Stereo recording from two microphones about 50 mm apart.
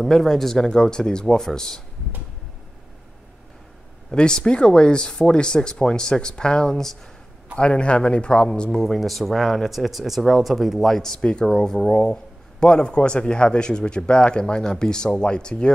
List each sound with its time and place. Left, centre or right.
0.0 s a man's voice: centre
4.1 s a man's voice: centre
7.5 s speech: left
8.8 s a man's voice: centre